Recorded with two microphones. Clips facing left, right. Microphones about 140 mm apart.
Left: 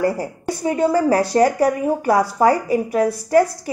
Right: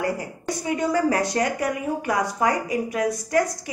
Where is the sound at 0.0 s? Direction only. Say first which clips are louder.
Left 6 dB; 35° left (ahead or behind).